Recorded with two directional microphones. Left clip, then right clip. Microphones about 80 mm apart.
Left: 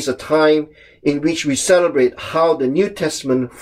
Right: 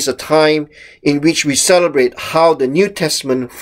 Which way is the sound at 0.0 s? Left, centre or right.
Right.